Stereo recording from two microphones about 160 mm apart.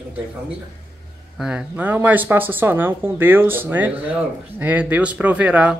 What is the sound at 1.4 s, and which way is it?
Speech, 5° right (ahead or behind).